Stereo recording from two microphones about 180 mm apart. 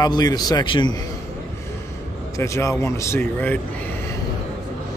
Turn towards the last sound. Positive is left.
turn(degrees=10)  # may be behind; listen again after turning